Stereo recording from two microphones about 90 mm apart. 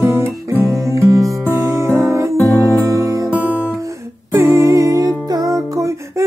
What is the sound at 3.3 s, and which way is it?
Music, 15° right (ahead or behind).